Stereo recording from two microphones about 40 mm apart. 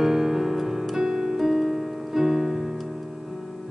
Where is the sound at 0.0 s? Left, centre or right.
Centre.